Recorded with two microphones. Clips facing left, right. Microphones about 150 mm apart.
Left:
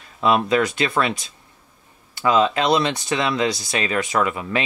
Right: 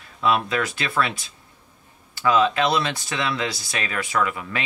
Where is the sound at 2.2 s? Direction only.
25° left (ahead or behind).